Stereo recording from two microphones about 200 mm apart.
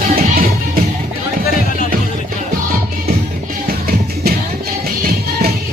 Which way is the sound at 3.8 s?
50° right (ahead or behind).